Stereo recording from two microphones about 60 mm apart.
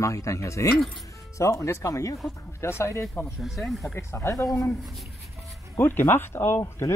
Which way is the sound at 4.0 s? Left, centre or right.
Left.